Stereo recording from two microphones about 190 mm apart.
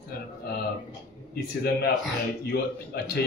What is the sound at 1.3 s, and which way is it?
A man's voice, 55° left (ahead or behind).